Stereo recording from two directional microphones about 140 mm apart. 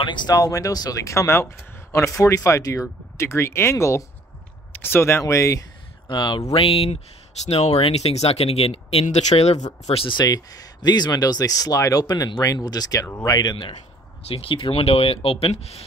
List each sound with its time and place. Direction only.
0.0 s speech: 35° left (ahead or behind)
6.0 s speech: 35° left (ahead or behind); by 9.7 s 50° left (ahead or behind)
9.8 s speech: 40° left (ahead or behind)
14.2 s speech: 40° left (ahead or behind)